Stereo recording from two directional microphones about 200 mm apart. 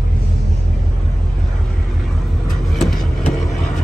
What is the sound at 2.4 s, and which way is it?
Vehicle, centre (ahead or behind).